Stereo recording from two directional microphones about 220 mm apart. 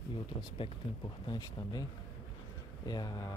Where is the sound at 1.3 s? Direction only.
20° left (ahead or behind).